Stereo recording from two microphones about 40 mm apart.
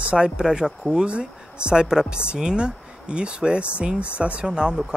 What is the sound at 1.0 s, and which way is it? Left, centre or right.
Speech, right.